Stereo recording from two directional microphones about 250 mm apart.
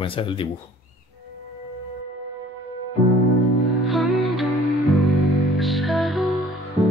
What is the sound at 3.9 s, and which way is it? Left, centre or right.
Music, centre.